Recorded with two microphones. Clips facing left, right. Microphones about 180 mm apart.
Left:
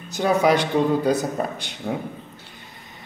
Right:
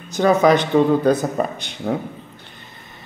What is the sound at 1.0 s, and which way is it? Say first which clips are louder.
Speech: right 4 dB; 10° left (ahead or behind).